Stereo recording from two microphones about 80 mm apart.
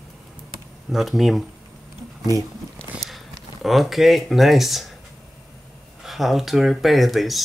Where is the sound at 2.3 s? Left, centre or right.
Right.